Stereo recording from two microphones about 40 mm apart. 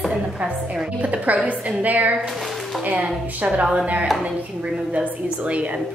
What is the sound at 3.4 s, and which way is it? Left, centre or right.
Speech, right.